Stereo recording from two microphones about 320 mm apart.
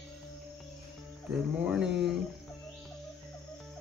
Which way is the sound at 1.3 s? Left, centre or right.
Centre.